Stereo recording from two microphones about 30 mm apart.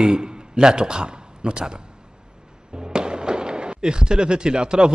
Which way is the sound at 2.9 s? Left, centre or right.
Right.